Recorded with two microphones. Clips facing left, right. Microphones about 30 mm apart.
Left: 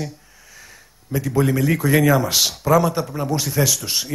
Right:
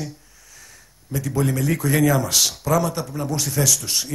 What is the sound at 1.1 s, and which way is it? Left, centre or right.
A man's voice, centre.